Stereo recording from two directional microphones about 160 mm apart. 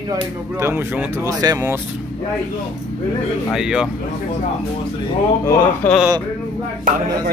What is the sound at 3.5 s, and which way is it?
Speech, 5° right (ahead or behind).